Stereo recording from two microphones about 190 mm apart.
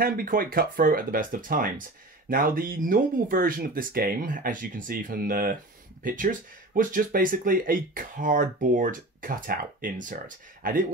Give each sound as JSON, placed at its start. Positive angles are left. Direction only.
{"t": 0.0, "sound": "speech", "side_deg": -50}